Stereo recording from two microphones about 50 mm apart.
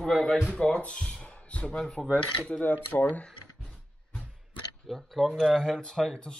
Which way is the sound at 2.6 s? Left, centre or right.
Left.